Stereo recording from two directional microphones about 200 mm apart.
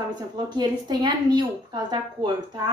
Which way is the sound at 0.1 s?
20° right (ahead or behind).